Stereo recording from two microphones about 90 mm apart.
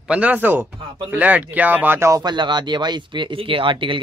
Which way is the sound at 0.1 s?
15° right (ahead or behind).